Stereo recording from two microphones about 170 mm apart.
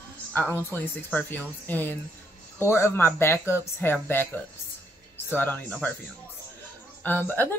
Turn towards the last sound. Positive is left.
turn(degrees=10)  # may be behind; listen again after turning